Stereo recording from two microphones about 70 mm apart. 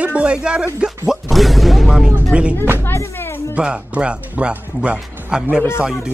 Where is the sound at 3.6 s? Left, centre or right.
Centre.